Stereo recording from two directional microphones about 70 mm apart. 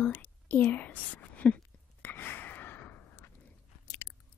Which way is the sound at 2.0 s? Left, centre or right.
Left.